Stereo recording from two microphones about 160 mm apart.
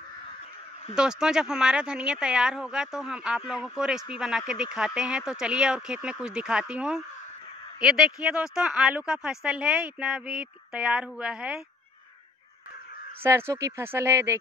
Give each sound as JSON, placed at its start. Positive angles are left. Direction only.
{"t": 0.9, "sound": "speech", "side_deg": -5}
{"t": 13.2, "sound": "speech", "side_deg": -15}